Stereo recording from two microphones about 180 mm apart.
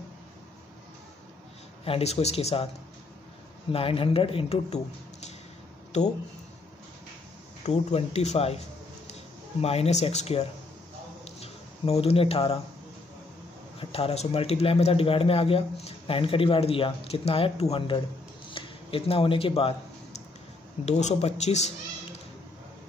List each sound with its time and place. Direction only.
1.9 s a man's voice: 35° left (ahead or behind)
3.7 s a man's voice: 30° left (ahead or behind)
7.6 s a man's voice: 35° left (ahead or behind)
9.6 s a man's voice: 35° left (ahead or behind)
11.2 s a sound: 35° left (ahead or behind)
13.7 s a man's voice: 35° left (ahead or behind)
18.5 s a sound: 30° left (ahead or behind)
20.8 s a man's voice: 40° left (ahead or behind)